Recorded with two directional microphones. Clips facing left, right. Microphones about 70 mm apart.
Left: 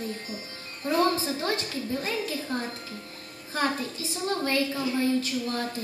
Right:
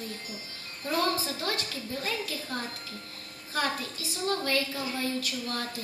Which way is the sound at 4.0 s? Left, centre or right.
Left.